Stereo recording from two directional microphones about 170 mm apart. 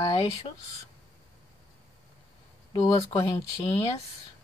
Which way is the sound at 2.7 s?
20° left (ahead or behind).